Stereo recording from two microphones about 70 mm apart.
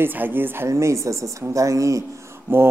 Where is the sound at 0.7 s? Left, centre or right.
Right.